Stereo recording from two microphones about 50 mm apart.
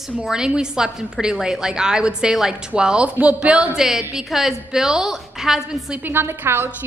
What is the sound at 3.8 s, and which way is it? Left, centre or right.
A woman's voice, centre.